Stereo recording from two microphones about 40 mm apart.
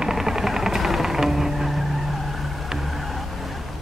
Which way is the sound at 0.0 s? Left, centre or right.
Centre.